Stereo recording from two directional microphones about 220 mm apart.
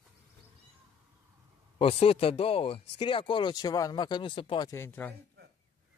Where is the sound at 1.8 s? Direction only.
25° left (ahead or behind); by 5.1 s 10° left (ahead or behind).